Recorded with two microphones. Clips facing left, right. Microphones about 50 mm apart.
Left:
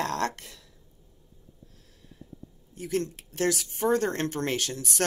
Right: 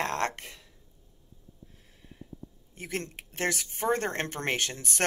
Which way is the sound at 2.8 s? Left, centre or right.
Right.